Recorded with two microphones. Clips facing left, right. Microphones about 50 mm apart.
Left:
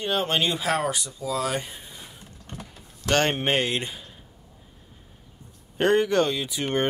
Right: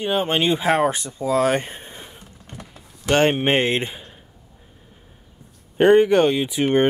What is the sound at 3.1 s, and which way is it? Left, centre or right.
Speech, centre.